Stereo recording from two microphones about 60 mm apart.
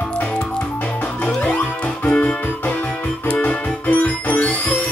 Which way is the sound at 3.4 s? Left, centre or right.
Left.